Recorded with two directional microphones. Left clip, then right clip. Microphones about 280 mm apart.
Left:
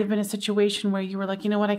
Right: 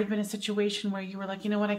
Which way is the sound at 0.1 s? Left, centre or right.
Left.